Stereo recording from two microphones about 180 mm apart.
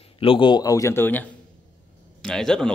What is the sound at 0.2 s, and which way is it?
Speech, 30° left (ahead or behind).